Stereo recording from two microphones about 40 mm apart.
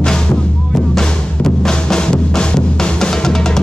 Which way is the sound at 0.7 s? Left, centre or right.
Centre.